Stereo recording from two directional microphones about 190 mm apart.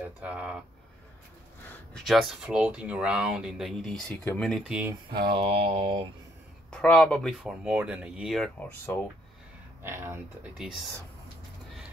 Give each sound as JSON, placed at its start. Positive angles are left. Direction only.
{"t": 0.0, "sound": "speech", "side_deg": -5}
{"t": 1.7, "sound": "speech", "side_deg": 0}
{"t": 4.1, "sound": "speech", "side_deg": 15}
{"t": 4.4, "sound": "speech", "side_deg": 0}
{"t": 5.3, "sound": "mantra", "side_deg": -30}
{"t": 6.7, "sound": "speech", "side_deg": 5}
{"t": 9.8, "sound": "speech", "side_deg": -10}